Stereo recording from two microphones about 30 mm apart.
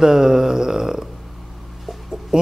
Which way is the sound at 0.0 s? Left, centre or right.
Centre.